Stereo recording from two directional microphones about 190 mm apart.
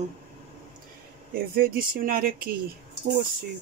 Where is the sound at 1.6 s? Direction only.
50° right (ahead or behind).